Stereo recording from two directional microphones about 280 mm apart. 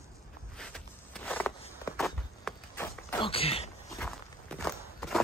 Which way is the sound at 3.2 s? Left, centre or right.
Left.